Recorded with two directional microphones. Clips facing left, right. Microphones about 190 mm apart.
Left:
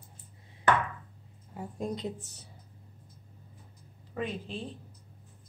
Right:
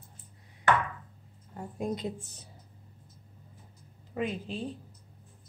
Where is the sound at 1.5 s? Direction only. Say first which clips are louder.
Left 1 dB; 10° left (ahead or behind).